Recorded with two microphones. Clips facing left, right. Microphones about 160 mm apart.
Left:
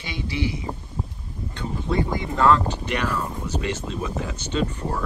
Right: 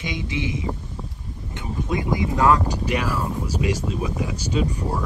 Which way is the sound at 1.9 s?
15° right (ahead or behind).